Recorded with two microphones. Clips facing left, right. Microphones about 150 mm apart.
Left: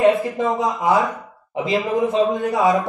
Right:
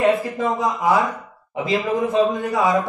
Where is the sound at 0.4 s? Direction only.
20° left (ahead or behind).